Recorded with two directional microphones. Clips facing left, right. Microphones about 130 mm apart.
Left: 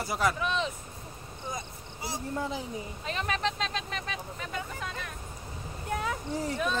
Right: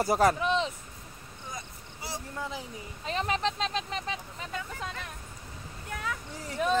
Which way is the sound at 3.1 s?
25° right (ahead or behind).